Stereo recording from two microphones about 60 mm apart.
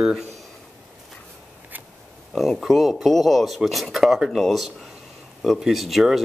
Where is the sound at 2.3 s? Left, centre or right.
Centre.